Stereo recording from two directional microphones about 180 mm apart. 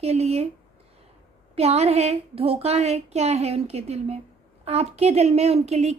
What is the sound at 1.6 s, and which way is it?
A woman's voice, 35° right (ahead or behind).